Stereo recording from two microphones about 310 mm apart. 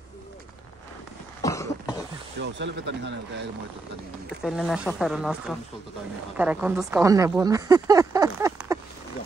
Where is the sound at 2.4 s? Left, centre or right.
Right.